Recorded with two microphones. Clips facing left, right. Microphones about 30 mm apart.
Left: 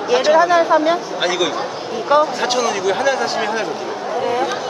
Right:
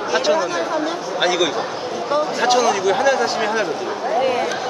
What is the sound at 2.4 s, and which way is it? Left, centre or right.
A man's voice, centre.